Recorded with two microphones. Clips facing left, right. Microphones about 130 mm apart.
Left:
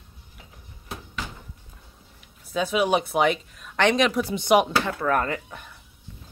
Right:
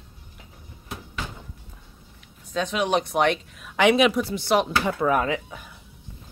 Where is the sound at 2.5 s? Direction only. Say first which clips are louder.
Left 1 dB; 5° left (ahead or behind).